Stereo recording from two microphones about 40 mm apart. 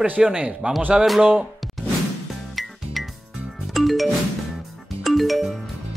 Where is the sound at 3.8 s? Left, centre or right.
Centre.